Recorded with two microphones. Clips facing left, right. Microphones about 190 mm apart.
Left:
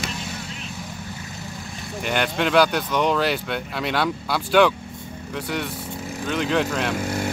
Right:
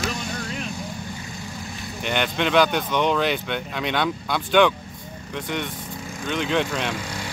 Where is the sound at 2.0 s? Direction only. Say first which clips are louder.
Left 1 dB; 5° left (ahead or behind).